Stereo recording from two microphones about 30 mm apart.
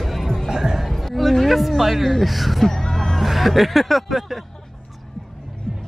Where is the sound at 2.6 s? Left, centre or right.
Centre.